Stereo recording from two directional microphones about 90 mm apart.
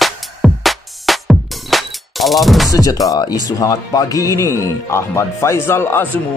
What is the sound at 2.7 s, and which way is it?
A man's voice, 40° left (ahead or behind).